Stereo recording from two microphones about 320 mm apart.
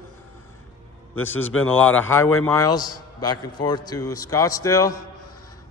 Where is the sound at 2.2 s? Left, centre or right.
Left.